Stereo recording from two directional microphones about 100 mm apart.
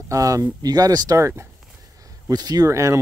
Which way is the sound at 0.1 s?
35° right (ahead or behind).